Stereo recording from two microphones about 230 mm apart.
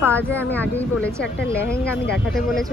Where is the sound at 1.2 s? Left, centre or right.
Left.